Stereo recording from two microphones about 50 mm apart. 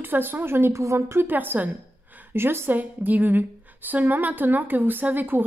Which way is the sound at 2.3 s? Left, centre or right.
Right.